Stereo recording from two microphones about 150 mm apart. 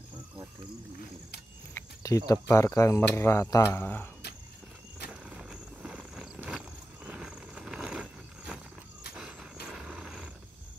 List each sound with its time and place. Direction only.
1.7 s speech: 20° left (ahead or behind)
5.1 s vehicle: 5° right (ahead or behind)
9.1 s roar: 5° right (ahead or behind)